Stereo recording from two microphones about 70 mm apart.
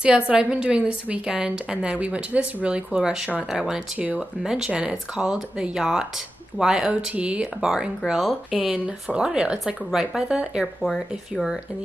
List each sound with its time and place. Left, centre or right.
0.0 s a woman's voice: centre
8.5 s a woman's voice: centre
10.8 s speech: centre